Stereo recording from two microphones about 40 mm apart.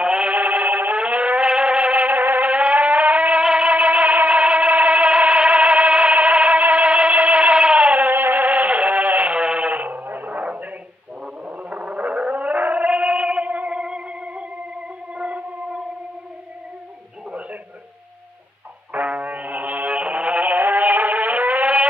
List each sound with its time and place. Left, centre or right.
0.0 s synthetic singing: right
0.3 s synthetic singing: right
0.9 s vehicle: right
1.5 s music: right
7.5 s a sound: right
8.1 s a sound: right
10.4 s dog: right
11.4 s whale vocalization: right
13.7 s music: right
15.1 s a sound: right
19.0 s music: right
20.5 s music: right